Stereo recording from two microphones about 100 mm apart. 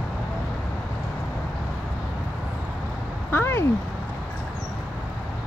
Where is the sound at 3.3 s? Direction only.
25° left (ahead or behind).